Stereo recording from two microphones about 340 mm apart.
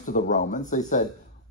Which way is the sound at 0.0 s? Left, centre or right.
Left.